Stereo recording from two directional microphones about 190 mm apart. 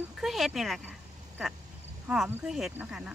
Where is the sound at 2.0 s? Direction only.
5° right (ahead or behind).